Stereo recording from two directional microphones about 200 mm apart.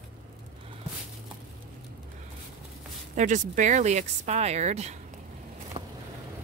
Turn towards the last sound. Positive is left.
turn(degrees=-35)  # may be behind; listen again after turning